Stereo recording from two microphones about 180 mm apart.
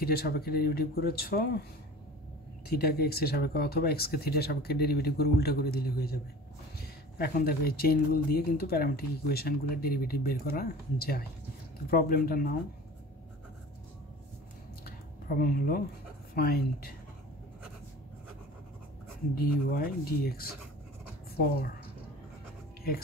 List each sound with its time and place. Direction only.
0.0 s speech: 60° left (ahead or behind)
2.8 s speech: 60° left (ahead or behind)
14.9 s a sound: 55° left (ahead or behind)
16.3 s speech: 55° left (ahead or behind)
19.3 s speech: 55° left (ahead or behind)